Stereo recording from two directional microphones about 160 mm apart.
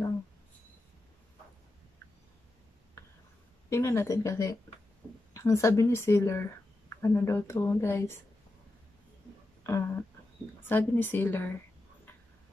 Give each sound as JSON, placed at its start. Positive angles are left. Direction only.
{"t": 3.7, "sound": "speech", "side_deg": 15}
{"t": 9.6, "sound": "a sound", "side_deg": 15}
{"t": 10.6, "sound": "speech", "side_deg": 15}